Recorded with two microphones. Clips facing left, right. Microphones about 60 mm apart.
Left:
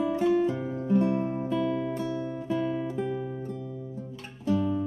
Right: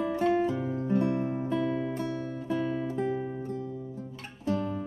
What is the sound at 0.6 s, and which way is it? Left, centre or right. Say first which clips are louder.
Music: left 2 dB; centre.